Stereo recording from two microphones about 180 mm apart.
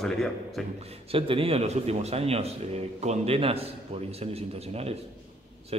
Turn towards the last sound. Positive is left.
turn(degrees=-35)  # may be behind; listen again after turning